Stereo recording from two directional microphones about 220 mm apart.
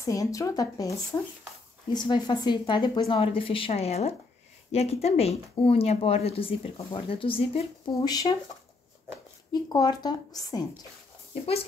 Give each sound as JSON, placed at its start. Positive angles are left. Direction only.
{"t": 0.0, "sound": "a woman's voice", "side_deg": 15}
{"t": 9.5, "sound": "a woman's voice", "side_deg": 20}